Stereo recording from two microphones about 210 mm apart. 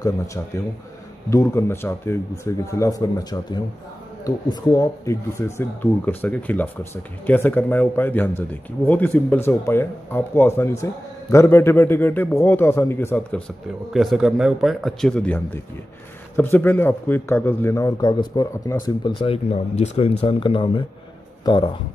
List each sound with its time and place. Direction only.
1.3 s a man's voice: 15° left (ahead or behind)